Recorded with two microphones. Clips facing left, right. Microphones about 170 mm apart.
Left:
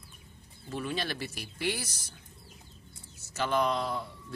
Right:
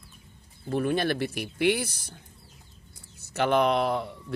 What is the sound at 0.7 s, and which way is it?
A man's voice, 55° right (ahead or behind).